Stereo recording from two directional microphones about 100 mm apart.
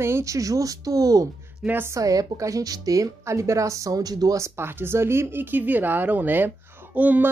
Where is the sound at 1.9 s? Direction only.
35° right (ahead or behind); by 7.3 s 15° right (ahead or behind).